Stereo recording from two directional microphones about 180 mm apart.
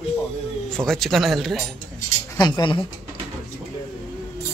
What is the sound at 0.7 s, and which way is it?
Speech, 5° left (ahead or behind).